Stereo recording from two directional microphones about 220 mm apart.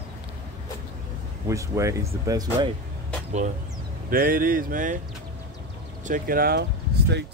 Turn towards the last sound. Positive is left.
turn(degrees=-50)  # may be behind; listen again after turning